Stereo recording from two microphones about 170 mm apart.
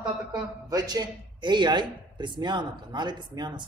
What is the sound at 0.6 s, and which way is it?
Speech, 25° right (ahead or behind).